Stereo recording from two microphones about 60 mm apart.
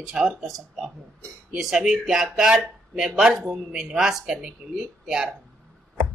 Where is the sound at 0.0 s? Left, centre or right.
Centre.